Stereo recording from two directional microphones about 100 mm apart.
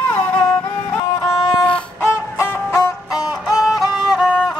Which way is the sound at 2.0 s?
25° left (ahead or behind).